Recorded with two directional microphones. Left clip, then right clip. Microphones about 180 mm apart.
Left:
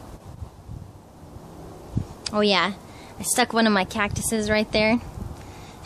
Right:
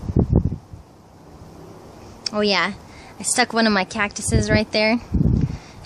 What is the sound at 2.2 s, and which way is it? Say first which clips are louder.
A woman's voice: right 1 dB; centre (ahead or behind).